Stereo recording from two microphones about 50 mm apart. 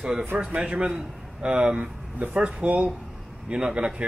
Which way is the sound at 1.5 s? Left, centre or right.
Right.